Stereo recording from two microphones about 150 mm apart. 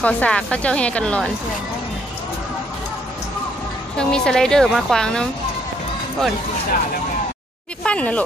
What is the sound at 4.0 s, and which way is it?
A woman's voice, 5° left (ahead or behind).